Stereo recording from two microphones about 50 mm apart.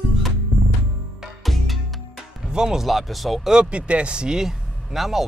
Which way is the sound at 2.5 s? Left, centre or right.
Centre.